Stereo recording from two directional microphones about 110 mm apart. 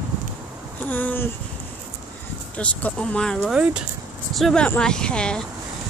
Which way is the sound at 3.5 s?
10° right (ahead or behind).